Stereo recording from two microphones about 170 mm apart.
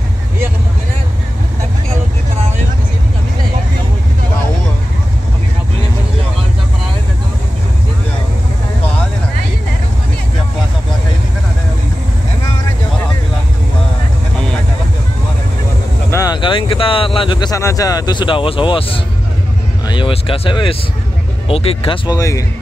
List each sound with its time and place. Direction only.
16.1 s speech: 20° left (ahead or behind)